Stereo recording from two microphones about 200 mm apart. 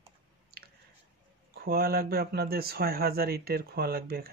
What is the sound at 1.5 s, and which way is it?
Speech, 50° right (ahead or behind).